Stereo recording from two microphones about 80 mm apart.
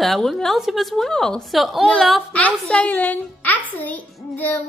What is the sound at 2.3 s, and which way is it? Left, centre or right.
A woman's voice, centre.